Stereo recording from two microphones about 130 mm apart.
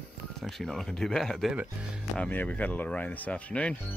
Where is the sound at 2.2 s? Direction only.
10° left (ahead or behind).